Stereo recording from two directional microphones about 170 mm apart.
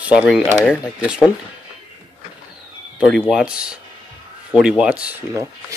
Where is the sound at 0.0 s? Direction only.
5° right (ahead or behind).